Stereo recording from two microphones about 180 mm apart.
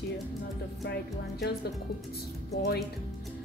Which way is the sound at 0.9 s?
65° left (ahead or behind).